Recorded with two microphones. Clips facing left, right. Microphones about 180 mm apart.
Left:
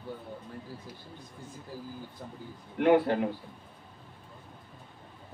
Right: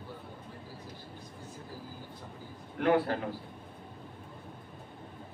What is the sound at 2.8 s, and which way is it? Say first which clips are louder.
Speech: left 4 dB; 20° left (ahead or behind).